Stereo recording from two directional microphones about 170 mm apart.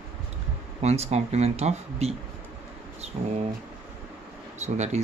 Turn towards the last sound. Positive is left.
turn(degrees=-40)  # may be behind; listen again after turning